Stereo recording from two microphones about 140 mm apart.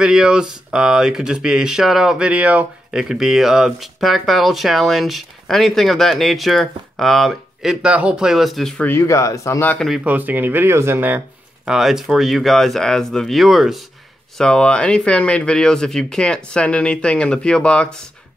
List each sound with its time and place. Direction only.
0.0 s speech: 5° right (ahead or behind)
8.8 s speech: 20° left (ahead or behind)
9.8 s speech: 10° right (ahead or behind)